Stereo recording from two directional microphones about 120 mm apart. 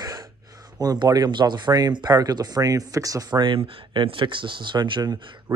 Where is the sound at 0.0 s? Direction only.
30° right (ahead or behind).